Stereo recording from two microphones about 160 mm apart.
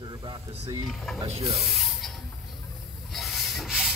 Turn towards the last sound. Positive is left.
turn(degrees=0)  # may be behind; listen again after turning